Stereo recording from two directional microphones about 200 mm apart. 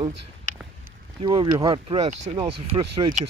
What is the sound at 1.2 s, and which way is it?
Speech, 20° right (ahead or behind).